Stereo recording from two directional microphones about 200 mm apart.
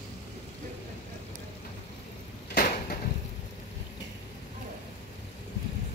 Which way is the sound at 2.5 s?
45° left (ahead or behind).